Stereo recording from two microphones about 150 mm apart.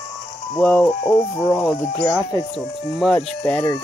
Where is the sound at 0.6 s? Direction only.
Centre (ahead or behind).